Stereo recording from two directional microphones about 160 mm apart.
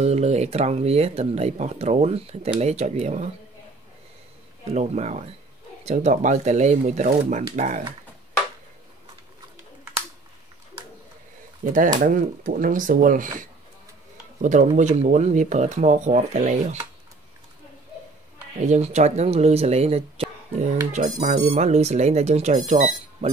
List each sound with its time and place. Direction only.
0.0 s speech: 45° right (ahead or behind)
4.7 s speech: 45° right (ahead or behind)
11.6 s speech: 55° right (ahead or behind)
14.4 s speech: 50° right (ahead or behind)
18.7 s speech: 45° right (ahead or behind)